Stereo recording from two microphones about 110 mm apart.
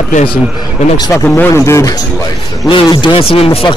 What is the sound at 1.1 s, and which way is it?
Speech, 15° left (ahead or behind).